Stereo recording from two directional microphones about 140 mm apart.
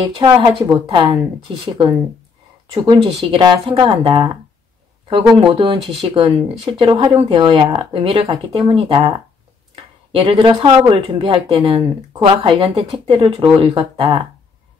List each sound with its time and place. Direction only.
0.2 s speech: 30° right (ahead or behind)
5.3 s speech: 35° right (ahead or behind)
10.1 s speech: 40° right (ahead or behind)